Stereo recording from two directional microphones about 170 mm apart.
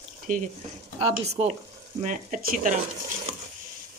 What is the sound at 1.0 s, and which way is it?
Speech, 35° right (ahead or behind).